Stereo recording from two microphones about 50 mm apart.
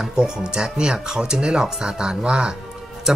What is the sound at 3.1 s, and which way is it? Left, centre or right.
Music, centre.